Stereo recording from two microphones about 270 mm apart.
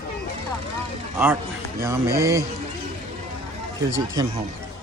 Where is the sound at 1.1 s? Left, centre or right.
Centre.